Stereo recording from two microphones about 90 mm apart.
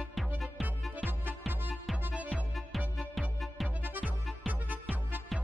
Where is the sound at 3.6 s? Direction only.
20° right (ahead or behind).